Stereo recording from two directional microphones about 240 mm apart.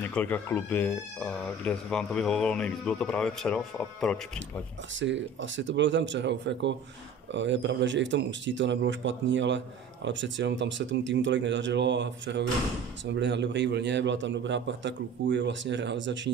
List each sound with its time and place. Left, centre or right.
0.1 s speech: centre
4.9 s a man's voice: right